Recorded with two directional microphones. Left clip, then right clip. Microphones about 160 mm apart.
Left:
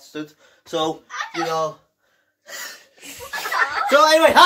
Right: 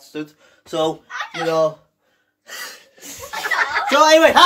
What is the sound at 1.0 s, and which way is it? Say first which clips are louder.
Speech: even; 30° right (ahead or behind).